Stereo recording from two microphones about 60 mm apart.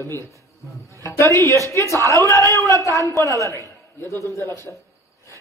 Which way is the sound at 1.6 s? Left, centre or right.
Left.